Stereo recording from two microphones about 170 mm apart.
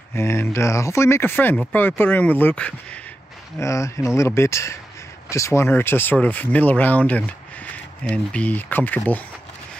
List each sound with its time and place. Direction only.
0.1 s speech: 15° left (ahead or behind)
3.5 s speech: 15° left (ahead or behind)